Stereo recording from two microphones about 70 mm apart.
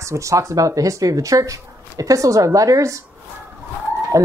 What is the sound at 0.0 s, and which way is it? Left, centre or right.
Speech, right.